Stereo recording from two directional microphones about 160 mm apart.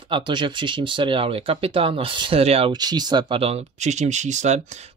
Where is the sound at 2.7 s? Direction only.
25° right (ahead or behind); by 4.6 s 45° right (ahead or behind).